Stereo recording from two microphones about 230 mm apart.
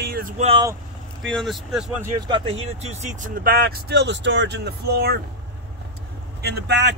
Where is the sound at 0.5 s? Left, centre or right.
Centre.